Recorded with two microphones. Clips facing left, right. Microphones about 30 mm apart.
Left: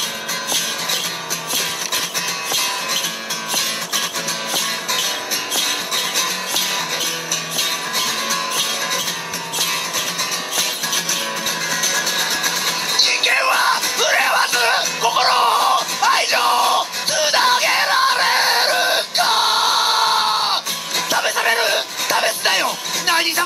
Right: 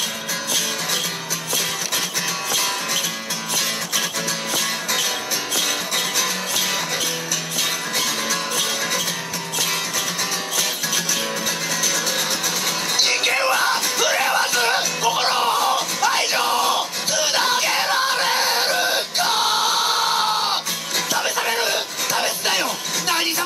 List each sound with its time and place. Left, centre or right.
2.5 s music: centre
5.6 s music: centre
11.9 s music: centre
15.1 s music: left